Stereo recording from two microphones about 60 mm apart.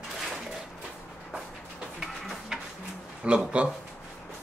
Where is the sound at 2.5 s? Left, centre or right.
Centre.